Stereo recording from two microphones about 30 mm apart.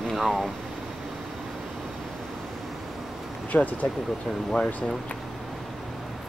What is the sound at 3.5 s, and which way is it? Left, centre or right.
Speech, left.